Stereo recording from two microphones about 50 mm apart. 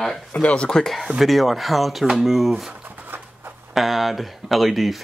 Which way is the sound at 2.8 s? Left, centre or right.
Right.